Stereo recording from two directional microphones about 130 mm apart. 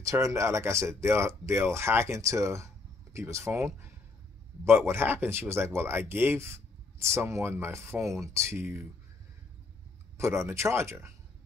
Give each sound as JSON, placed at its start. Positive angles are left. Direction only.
{"t": 0.0, "sound": "speech", "side_deg": -25}
{"t": 10.1, "sound": "speech", "side_deg": -20}